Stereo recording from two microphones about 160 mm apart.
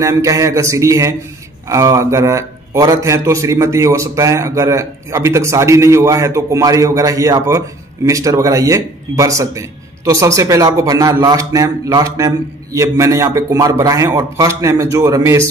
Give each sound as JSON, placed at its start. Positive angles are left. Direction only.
{"t": 0.0, "sound": "a man's voice", "side_deg": -20}